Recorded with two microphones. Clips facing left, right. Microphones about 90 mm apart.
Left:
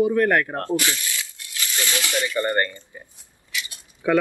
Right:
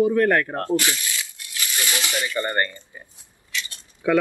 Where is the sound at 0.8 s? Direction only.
20° right (ahead or behind).